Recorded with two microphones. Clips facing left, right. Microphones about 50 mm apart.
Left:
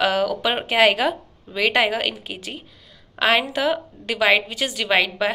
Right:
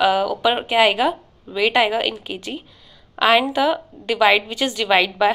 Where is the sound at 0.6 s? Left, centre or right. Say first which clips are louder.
Left 1 dB; left.